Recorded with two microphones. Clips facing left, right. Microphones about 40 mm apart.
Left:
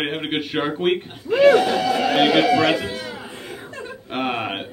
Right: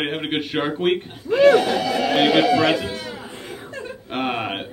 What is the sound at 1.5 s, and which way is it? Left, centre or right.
Speech, left.